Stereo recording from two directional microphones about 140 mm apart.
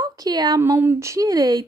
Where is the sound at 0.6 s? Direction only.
15° right (ahead or behind).